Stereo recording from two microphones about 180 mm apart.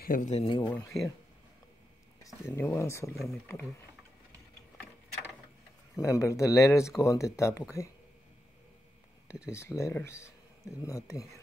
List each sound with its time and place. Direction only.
0.0 s speech: 50° left (ahead or behind)
0.3 s speech: 30° left (ahead or behind)
0.7 s speech: 10° left (ahead or behind)
2.4 s speech: 10° left (ahead or behind)
5.9 s speech: 15° left (ahead or behind)
9.5 s speech: 15° left (ahead or behind)